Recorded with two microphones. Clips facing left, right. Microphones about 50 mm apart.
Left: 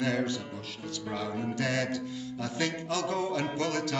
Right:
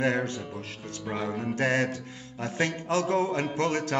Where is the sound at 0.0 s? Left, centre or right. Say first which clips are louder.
Right 3 dB; right.